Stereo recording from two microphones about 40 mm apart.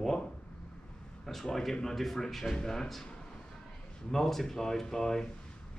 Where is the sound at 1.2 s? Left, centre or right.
Centre.